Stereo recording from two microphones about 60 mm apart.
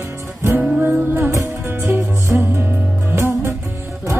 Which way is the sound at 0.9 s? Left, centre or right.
Right.